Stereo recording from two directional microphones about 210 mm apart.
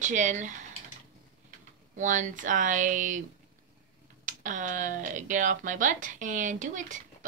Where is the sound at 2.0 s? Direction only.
35° right (ahead or behind).